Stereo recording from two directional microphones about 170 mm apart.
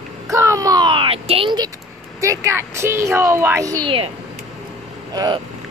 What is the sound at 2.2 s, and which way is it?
A woman's voice, 15° right (ahead or behind).